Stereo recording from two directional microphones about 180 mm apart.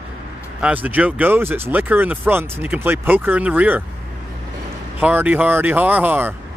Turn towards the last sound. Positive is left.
turn(degrees=-10)  # may be behind; listen again after turning